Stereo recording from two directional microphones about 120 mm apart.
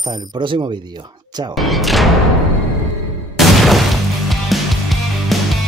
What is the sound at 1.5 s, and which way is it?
Speech, centre (ahead or behind).